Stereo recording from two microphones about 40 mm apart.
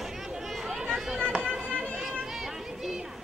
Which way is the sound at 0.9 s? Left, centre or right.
Centre.